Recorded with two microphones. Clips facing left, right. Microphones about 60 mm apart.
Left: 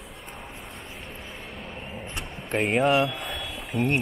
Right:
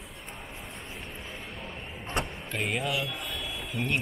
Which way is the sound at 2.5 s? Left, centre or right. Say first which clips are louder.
Left 9 dB; left.